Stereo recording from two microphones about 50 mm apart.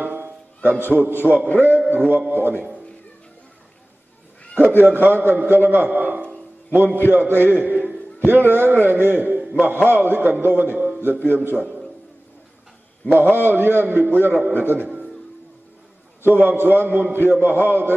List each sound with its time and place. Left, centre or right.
0.0 s music: right
0.7 s a man's voice: right
4.6 s cat: right
4.9 s a man's voice: right
9.4 s a sound: right
9.8 s a man's voice: right
11.6 s a sound: centre
13.1 s a man's voice: right
16.3 s a man's voice: right